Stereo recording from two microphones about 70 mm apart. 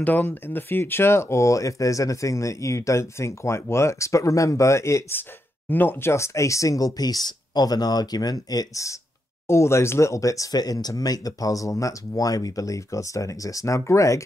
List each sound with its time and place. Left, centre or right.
0.0 s speech: left
5.7 s speech: left
9.5 s speech: left